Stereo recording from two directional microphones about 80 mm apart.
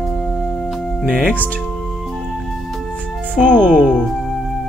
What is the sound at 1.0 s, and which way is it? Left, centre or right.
Speech, centre.